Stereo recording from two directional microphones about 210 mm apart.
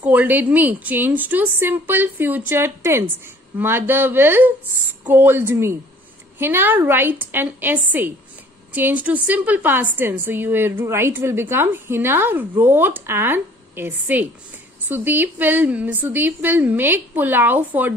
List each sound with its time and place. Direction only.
0.0 s a woman's voice: 10° right (ahead or behind)